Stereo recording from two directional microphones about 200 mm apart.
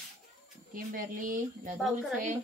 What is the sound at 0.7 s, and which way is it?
Speech, 45° right (ahead or behind).